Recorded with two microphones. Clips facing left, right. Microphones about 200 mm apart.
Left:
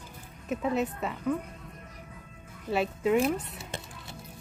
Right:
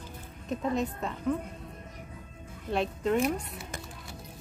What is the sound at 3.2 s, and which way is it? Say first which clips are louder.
Speech: left 1 dB; 25° left (ahead or behind).